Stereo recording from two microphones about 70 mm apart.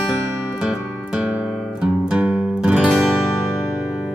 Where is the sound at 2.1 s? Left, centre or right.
Centre.